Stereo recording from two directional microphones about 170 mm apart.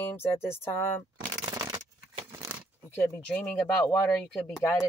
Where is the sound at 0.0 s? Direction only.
15° left (ahead or behind).